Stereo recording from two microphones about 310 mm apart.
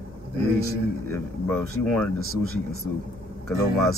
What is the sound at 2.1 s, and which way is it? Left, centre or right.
Speech, left.